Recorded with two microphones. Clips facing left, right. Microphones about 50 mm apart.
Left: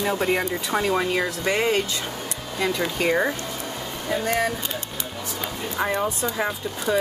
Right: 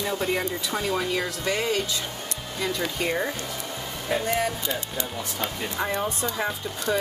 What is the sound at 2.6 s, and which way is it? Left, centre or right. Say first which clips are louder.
Speech: left 4 dB; left.